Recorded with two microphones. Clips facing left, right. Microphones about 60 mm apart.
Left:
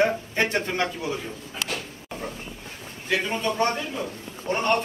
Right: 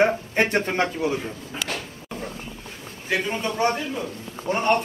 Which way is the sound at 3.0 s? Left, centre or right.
Centre.